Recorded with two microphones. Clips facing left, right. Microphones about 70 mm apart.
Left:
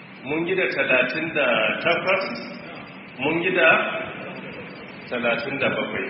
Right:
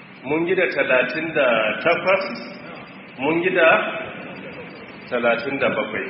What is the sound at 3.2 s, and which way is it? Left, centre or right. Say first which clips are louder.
Speech: right 3 dB; right.